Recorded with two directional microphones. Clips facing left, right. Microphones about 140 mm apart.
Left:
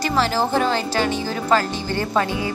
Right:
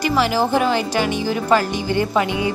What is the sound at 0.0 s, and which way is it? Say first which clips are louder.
Speech: right 2 dB; 10° right (ahead or behind).